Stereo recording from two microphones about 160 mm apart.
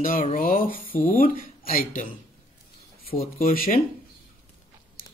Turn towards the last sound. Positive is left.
turn(degrees=60)  # may be behind; listen again after turning